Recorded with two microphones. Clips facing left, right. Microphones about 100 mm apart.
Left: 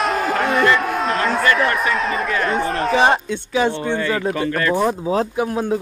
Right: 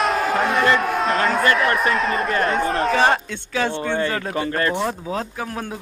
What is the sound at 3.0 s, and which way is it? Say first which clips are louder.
Speech: left 2 dB; 15° left (ahead or behind).